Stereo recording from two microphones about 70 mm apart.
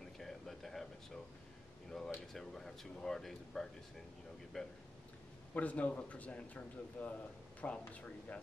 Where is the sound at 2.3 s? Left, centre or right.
Centre.